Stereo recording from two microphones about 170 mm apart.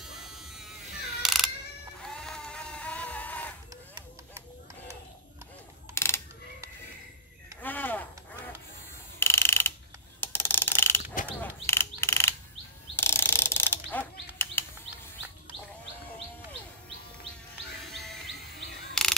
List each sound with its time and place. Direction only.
0.0 s electric shaver: centre (ahead or behind)
1.2 s mechanisms: centre (ahead or behind)
2.0 s a sound: 5° left (ahead or behind)
5.9 s mechanisms: 15° left (ahead or behind)
7.6 s a sound: 10° left (ahead or behind)
9.2 s mechanisms: 15° left (ahead or behind)
10.2 s a sound: 15° left (ahead or behind)
11.3 s mechanisms: 15° left (ahead or behind)
12.9 s ratchet: 15° left (ahead or behind)
14.4 s chirp: 15° left (ahead or behind)
17.9 s music: centre (ahead or behind)
19.0 s a sound: 5° left (ahead or behind)